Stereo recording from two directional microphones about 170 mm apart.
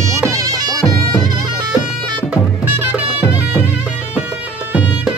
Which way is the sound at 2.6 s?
10° right (ahead or behind).